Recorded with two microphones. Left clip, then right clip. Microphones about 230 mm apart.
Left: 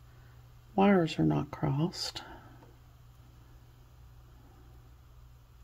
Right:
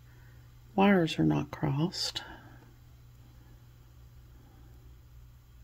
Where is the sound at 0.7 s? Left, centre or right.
Centre.